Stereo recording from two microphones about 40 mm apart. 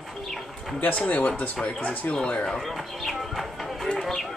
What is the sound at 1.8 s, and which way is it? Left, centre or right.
Speech, left.